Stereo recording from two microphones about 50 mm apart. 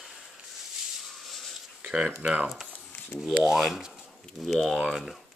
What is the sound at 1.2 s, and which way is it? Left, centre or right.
Wheeze, centre.